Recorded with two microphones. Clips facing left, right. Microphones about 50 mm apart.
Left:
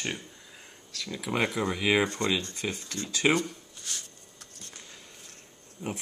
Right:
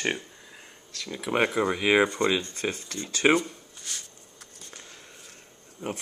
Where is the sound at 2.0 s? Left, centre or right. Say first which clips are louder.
Right 4 dB; centre.